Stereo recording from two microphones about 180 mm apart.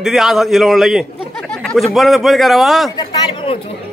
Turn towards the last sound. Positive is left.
turn(degrees=25)  # may be behind; listen again after turning